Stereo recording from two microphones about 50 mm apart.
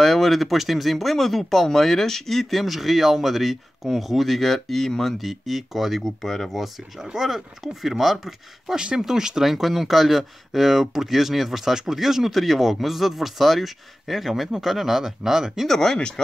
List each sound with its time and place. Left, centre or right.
0.0 s speech: centre
15.7 s speech: centre